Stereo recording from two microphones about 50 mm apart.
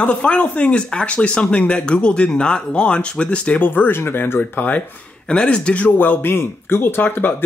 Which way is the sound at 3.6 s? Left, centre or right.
Left.